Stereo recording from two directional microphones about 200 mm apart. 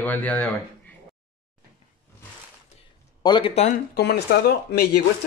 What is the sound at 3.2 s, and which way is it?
Speech, 25° left (ahead or behind).